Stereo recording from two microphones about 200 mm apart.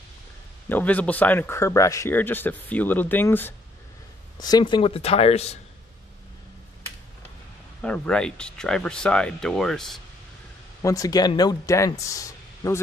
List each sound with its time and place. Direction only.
0.7 s speech: 10° left (ahead or behind); by 5.6 s 30° left (ahead or behind)
7.8 s speech: 5° left (ahead or behind)
10.8 s speech: 15° left (ahead or behind)